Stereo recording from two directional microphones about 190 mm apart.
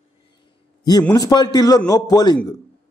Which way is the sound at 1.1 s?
20° left (ahead or behind).